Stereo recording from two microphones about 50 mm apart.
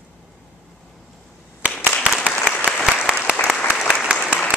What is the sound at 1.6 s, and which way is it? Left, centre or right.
Clapping, right.